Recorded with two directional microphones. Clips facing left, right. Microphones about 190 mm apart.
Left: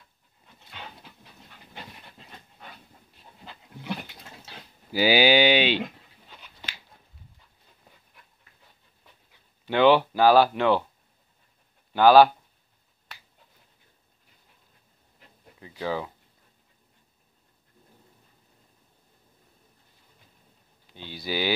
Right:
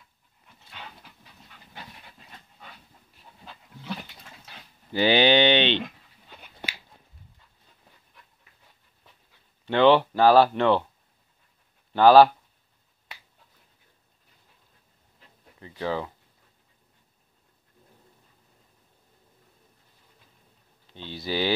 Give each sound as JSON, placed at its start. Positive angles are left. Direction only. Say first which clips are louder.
{"t": 3.8, "sound": "dog", "louder": "left 2 dB", "side_deg": 15}
{"t": 4.9, "sound": "speech", "louder": "even", "side_deg": 5}
{"t": 6.6, "sound": "a sound", "louder": "right 6 dB", "side_deg": -60}
{"t": 9.7, "sound": "speech", "louder": "right 1 dB", "side_deg": 5}
{"t": 11.9, "sound": "speech", "louder": "right 1 dB", "side_deg": 0}
{"t": 15.1, "sound": "a sound", "louder": "left 1 dB", "side_deg": 10}
{"t": 21.2, "sound": "speech", "louder": "right 2 dB", "side_deg": 5}